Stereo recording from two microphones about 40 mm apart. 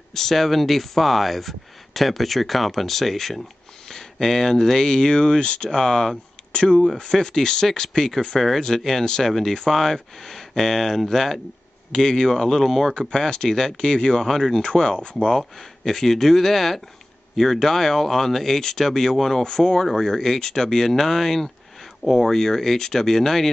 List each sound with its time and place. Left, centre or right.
0.1 s speech: centre
6.5 s speech: left
8.4 s speech: centre
13.1 s speech: centre
15.1 s speech: centre